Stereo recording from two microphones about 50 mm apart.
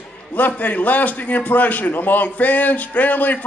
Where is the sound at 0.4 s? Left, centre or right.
Left.